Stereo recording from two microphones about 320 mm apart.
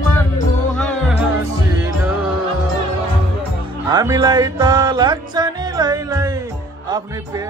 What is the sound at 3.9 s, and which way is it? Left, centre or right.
Music, centre.